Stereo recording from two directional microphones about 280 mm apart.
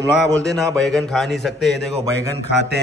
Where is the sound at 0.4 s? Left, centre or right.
Centre.